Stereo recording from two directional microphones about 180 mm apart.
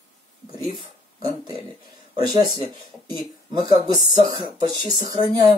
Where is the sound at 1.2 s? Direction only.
20° right (ahead or behind).